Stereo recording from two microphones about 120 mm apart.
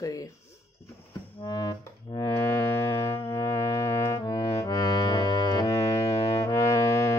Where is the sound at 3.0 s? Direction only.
25° left (ahead or behind).